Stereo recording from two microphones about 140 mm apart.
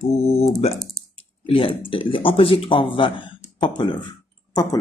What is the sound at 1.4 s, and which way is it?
Speech, 45° left (ahead or behind).